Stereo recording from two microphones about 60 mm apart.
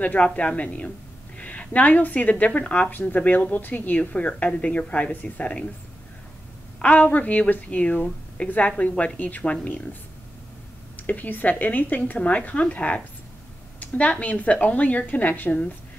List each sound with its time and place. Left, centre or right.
0.0 s a woman's voice: left
2.9 s a woman's voice: left
6.8 s a woman's voice: left
11.1 s a woman's voice: left